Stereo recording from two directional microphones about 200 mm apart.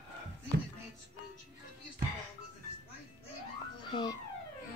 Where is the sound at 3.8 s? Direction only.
25° left (ahead or behind).